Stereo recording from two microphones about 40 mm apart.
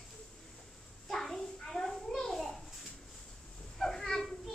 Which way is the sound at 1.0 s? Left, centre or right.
Centre.